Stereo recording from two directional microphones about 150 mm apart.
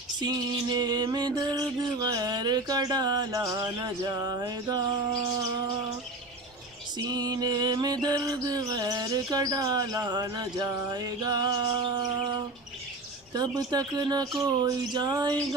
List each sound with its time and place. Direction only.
0.2 s mantra: 25° right (ahead or behind)
7.1 s mantra: 25° right (ahead or behind)